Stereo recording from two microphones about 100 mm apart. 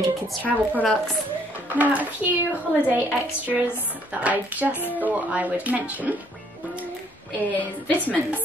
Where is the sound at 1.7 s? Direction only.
15° right (ahead or behind).